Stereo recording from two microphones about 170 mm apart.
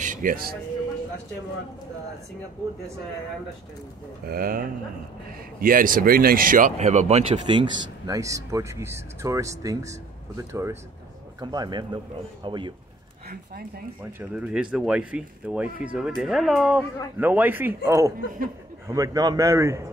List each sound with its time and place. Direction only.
0.0 s a sound: 50° right (ahead or behind)
4.3 s speech: 60° right (ahead or behind); by 7.2 s 40° right (ahead or behind)
7.3 s speech: 25° right (ahead or behind)
14.3 s speech: 5° right (ahead or behind)